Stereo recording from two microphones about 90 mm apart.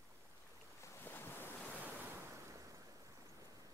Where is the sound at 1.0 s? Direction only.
20° left (ahead or behind).